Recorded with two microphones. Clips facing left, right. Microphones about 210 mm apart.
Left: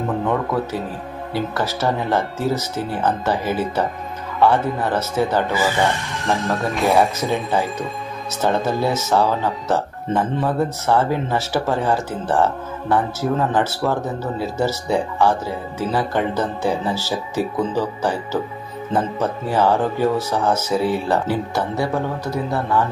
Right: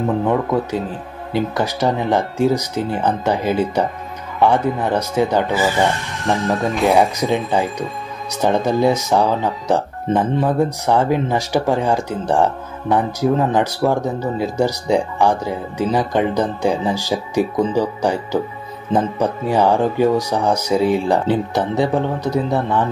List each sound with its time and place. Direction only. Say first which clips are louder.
0.3 s speech: right 3 dB; 15° right (ahead or behind)
5.5 s speech: right 2 dB; centre (ahead or behind)
7.0 s speech: right 2 dB; 15° right (ahead or behind)